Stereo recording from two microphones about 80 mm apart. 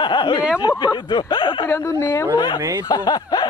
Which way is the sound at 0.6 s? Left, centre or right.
Left.